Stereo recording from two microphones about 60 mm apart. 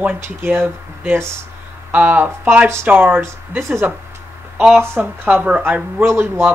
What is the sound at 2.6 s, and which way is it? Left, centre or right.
Speech, right.